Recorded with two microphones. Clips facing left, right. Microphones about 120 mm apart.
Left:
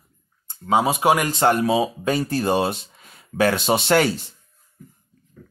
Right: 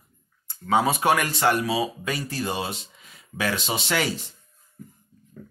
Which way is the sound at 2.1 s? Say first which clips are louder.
Left 8 dB; 50° left (ahead or behind).